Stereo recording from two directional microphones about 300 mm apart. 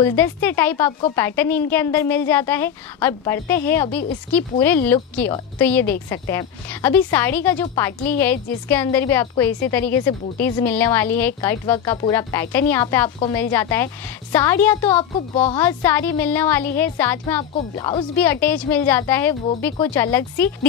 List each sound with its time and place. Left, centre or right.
0.0 s a woman's voice: centre
15.3 s speech: centre
15.6 s a woman's voice: centre